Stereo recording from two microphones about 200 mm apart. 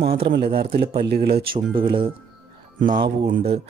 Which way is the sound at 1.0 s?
55° right (ahead or behind).